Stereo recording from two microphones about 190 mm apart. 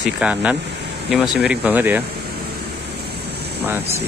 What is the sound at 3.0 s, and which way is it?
Vehicle, 60° right (ahead or behind).